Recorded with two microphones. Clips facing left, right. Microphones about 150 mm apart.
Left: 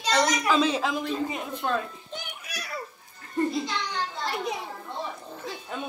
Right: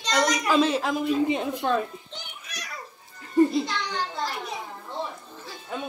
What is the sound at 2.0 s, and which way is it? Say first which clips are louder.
Children playing: left 3 dB; 10° left (ahead or behind).